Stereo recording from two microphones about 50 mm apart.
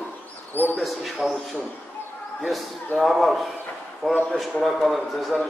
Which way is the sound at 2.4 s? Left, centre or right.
Centre.